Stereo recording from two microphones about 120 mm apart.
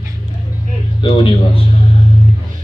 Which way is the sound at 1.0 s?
45° left (ahead or behind).